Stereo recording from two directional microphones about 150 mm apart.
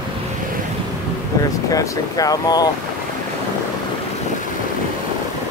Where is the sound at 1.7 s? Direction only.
25° left (ahead or behind).